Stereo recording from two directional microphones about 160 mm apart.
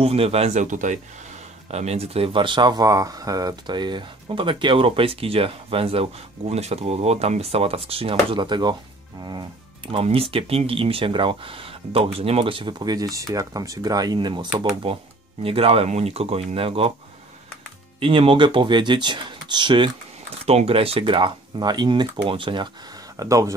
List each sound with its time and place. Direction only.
0.0 s speech: 40° right (ahead or behind)
18.0 s speech: 35° right (ahead or behind)
23.1 s speech: 20° right (ahead or behind)